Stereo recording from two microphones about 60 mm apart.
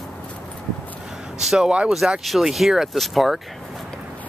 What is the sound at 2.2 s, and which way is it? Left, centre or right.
Speech, centre.